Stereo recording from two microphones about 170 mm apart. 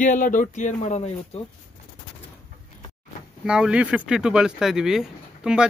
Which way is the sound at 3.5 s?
5° right (ahead or behind).